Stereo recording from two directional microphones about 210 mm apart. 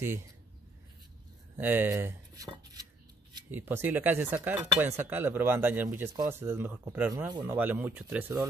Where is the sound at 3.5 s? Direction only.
10° right (ahead or behind).